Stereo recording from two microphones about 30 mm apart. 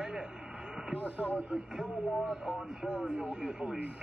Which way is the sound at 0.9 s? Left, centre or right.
Right.